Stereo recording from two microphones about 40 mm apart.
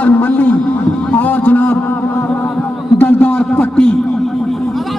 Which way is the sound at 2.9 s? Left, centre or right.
Left.